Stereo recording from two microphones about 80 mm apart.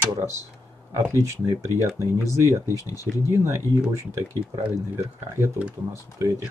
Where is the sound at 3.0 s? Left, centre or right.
Right.